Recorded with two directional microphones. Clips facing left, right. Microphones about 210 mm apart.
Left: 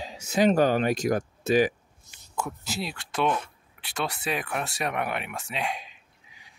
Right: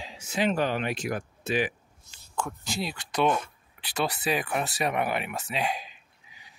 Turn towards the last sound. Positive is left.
turn(degrees=0)  # may be behind; listen again after turning